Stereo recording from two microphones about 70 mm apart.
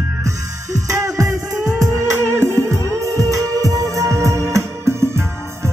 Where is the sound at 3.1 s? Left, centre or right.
Right.